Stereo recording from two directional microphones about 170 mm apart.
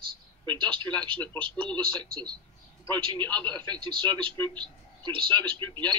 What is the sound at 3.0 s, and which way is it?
A man's voice, 30° right (ahead or behind).